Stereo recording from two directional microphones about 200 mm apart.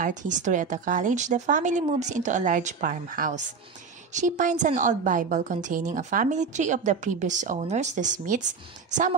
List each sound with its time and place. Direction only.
0.0 s a woman's voice: 40° right (ahead or behind)